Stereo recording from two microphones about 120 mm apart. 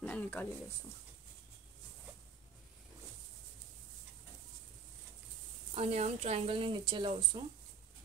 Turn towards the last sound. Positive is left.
turn(degrees=-45)  # may be behind; listen again after turning